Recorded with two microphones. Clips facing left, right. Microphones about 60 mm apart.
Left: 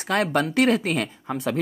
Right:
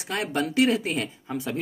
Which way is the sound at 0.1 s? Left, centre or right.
Left.